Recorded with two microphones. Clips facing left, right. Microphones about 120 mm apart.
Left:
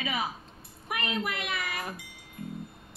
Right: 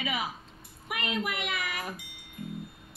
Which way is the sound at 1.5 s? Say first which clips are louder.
Even; 35° left (ahead or behind).